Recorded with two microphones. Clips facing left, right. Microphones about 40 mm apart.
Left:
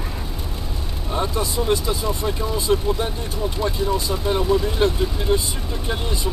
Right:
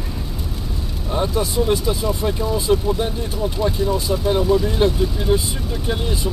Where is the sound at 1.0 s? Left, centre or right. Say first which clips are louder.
Right 3 dB; centre.